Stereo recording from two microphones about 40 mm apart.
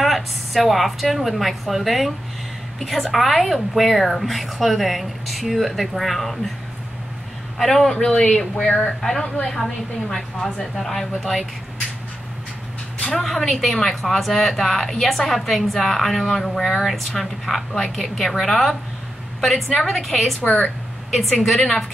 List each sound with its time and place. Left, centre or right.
0.0 s a woman's voice: centre
7.5 s a woman's voice: centre
7.9 s a man's voice: centre
8.7 s a woman's voice: centre
13.3 s a woman's voice: centre
20.4 s speech: left
21.1 s a woman's voice: centre